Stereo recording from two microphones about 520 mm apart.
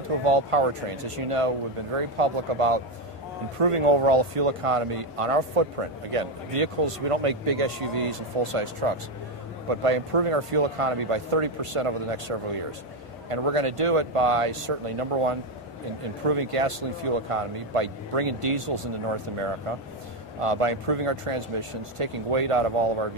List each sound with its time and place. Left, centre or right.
0.2 s speech: right
9.7 s speech: right
20.3 s speech: right